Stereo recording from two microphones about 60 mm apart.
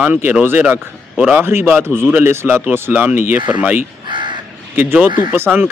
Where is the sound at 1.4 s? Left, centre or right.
Right.